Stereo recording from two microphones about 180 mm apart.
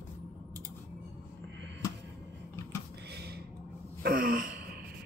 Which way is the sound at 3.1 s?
60° right (ahead or behind).